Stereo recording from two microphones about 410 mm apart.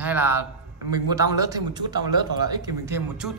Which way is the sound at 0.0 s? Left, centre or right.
Centre.